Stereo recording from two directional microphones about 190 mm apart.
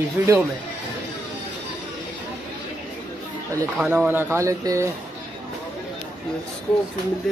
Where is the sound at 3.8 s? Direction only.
10° right (ahead or behind).